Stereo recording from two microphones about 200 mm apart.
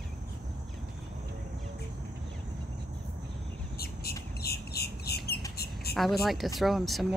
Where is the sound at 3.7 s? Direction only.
50° left (ahead or behind).